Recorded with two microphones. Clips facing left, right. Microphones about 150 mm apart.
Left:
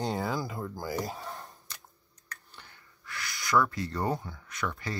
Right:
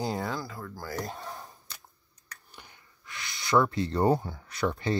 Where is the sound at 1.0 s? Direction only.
Centre (ahead or behind).